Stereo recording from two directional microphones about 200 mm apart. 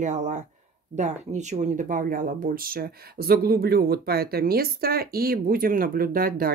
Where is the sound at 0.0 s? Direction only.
35° right (ahead or behind).